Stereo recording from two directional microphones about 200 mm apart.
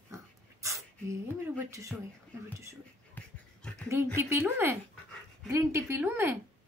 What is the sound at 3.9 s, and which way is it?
Speech, 10° right (ahead or behind).